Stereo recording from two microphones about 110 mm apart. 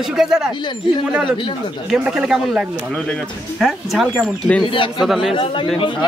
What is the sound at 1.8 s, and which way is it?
Speech, 5° right (ahead or behind).